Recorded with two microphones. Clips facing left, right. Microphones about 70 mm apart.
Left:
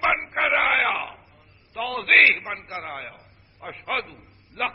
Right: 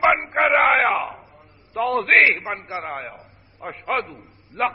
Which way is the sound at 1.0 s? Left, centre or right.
Right.